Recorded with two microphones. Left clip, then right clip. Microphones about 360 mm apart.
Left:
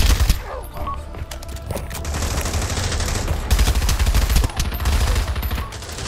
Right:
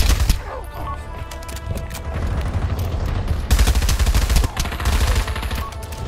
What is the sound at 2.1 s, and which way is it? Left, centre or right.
Fusillade, left.